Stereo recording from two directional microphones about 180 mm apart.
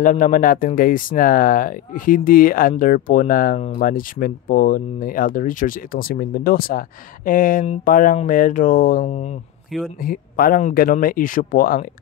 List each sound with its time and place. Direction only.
0.0 s speech: 45° left (ahead or behind)
10.0 s speech: 55° left (ahead or behind)